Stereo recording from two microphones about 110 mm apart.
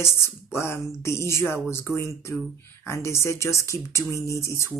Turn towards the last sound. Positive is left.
turn(degrees=25)  # may be behind; listen again after turning